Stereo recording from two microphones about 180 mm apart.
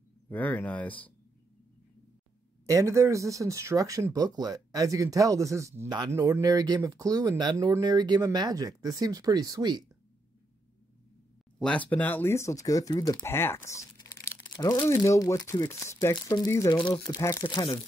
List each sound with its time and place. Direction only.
0.3 s speech: 10° left (ahead or behind)
2.6 s speech: 15° right (ahead or behind)
11.6 s speech: 10° left (ahead or behind)
14.4 s speech: 25° left (ahead or behind)